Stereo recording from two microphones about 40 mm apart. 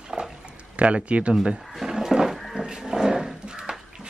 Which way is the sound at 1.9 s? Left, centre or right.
Centre.